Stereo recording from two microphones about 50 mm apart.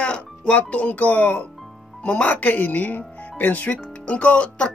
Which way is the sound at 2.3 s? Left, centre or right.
Left.